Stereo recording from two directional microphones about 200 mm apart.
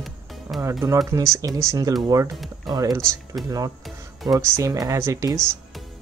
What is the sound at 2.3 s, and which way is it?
Speech, centre (ahead or behind).